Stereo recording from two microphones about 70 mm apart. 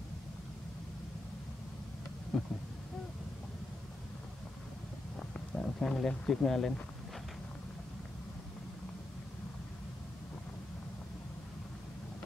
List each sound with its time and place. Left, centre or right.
2.3 s speech: centre
5.6 s speech: centre